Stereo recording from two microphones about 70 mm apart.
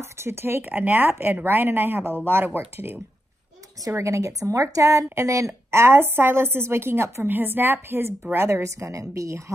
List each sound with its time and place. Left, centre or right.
0.0 s a woman's voice: right
3.9 s a woman's voice: right
8.5 s a woman's voice: right